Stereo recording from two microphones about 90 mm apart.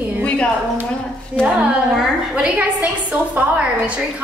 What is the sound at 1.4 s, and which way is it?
A woman's voice, 10° right (ahead or behind).